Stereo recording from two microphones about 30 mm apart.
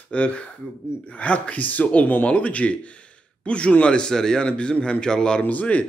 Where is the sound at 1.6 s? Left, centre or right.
Left.